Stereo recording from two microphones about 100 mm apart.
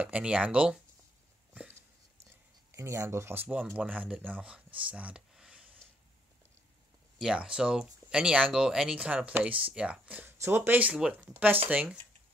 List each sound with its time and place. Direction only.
0.0 s speech: 10° right (ahead or behind)
2.7 s speech: 30° right (ahead or behind)
3.9 s speech: 15° right (ahead or behind)
4.7 s a sound: 15° right (ahead or behind)
7.2 s speech: 5° right (ahead or behind)
10.3 s speech: 25° right (ahead or behind)